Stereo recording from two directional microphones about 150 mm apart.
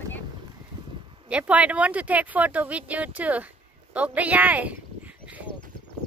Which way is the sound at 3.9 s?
10° right (ahead or behind).